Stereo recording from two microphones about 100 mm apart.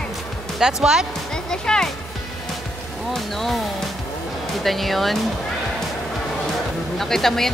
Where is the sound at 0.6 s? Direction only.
5° right (ahead or behind).